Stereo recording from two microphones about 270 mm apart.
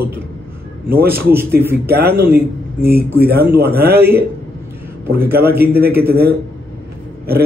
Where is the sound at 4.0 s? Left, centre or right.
Centre.